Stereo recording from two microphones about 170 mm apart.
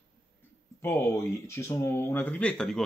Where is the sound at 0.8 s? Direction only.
15° left (ahead or behind).